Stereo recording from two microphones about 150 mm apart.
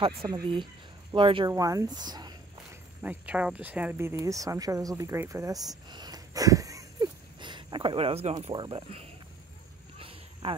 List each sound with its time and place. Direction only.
0.3 s speech: 30° right (ahead or behind)
1.5 s speech: 20° right (ahead or behind)
2.7 s speech: 10° right (ahead or behind); by 8.4 s 45° right (ahead or behind)
8.4 s speech: 30° right (ahead or behind)
9.9 s a sound: 35° right (ahead or behind)